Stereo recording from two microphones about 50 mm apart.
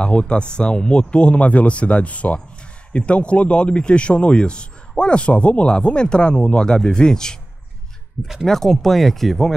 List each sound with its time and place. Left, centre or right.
0.0 s speech: left
8.5 s speech: centre